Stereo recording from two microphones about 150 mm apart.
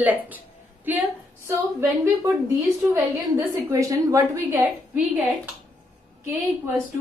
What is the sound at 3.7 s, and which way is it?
Speech, 20° right (ahead or behind).